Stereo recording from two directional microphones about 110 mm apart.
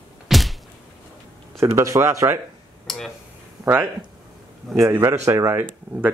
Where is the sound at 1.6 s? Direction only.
25° right (ahead or behind).